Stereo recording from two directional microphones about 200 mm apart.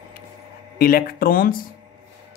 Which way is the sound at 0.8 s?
45° left (ahead or behind).